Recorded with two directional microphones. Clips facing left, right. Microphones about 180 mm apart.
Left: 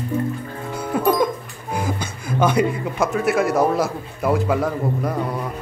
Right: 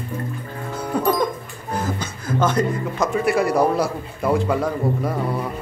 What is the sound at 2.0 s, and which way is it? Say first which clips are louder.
Speech: left 2 dB; 10° left (ahead or behind).